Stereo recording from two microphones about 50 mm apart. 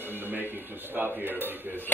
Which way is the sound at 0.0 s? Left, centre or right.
Right.